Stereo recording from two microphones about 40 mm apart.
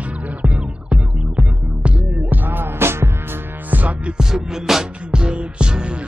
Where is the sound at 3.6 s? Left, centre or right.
Right.